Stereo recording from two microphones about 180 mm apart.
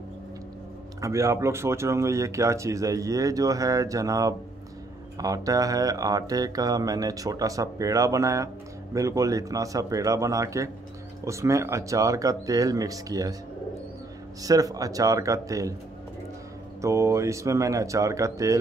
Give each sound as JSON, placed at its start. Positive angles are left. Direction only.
{"t": 1.0, "sound": "speech", "side_deg": -15}
{"t": 14.4, "sound": "speech", "side_deg": -20}
{"t": 16.8, "sound": "speech", "side_deg": -15}